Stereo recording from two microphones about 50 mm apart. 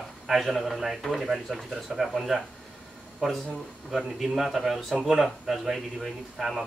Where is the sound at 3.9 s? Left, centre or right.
Centre.